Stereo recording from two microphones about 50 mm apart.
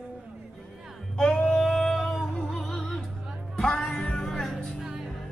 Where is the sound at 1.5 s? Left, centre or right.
Centre.